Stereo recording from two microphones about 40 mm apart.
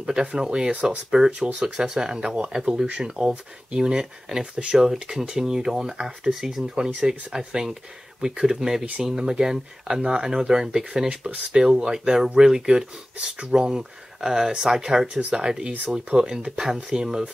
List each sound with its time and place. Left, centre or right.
0.0 s speech: centre
6.6 s speech: right
11.6 s speech: centre
15.1 s speech: right
15.4 s speech: centre